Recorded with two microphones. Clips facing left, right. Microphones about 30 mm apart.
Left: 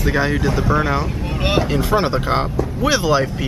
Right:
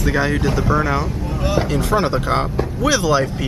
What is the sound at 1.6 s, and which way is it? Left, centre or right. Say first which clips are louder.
Speech: even; centre.